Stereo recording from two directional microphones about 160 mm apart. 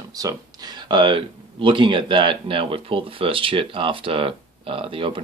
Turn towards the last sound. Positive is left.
turn(degrees=-35)  # may be behind; listen again after turning